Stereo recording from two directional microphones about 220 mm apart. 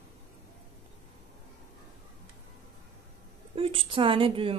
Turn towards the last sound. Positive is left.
turn(degrees=-25)  # may be behind; listen again after turning